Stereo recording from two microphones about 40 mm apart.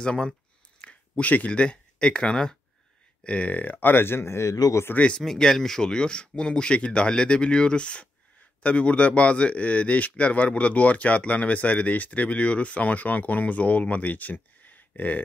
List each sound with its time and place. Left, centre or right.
0.0 s speech: left
0.7 s a sound: left
1.5 s speech: left
3.3 s speech: left
5.0 s speech: left
5.4 s speech: centre; by 14.3 s left
14.3 s a sound: left